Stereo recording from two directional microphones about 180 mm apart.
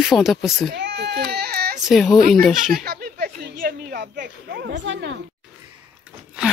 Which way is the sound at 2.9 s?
55° right (ahead or behind).